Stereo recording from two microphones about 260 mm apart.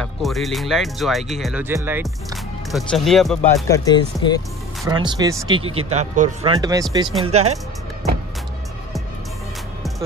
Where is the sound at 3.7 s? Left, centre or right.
Centre.